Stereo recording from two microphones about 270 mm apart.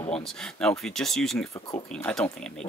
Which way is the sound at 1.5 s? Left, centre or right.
Centre.